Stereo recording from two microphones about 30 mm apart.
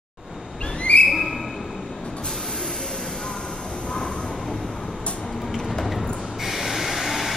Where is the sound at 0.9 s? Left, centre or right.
Left.